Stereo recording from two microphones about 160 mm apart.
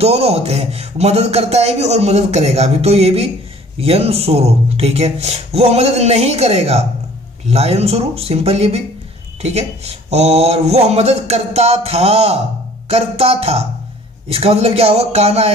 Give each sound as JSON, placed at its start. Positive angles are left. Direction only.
{"t": 0.0, "sound": "a man's voice", "side_deg": -40}